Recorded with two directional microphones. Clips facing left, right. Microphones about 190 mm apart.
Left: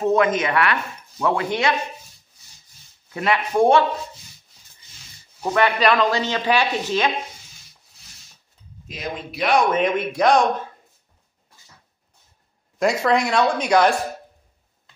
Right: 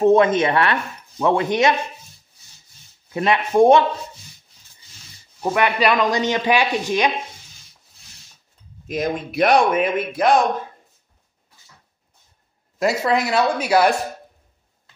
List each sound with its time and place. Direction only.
0.0 s speech: 30° right (ahead or behind)
3.1 s speech: 25° right (ahead or behind)
5.4 s speech: 15° right (ahead or behind)
8.8 s speech: 50° right (ahead or behind)
9.7 s speech: 5° right (ahead or behind)
12.7 s speech: 5° right (ahead or behind)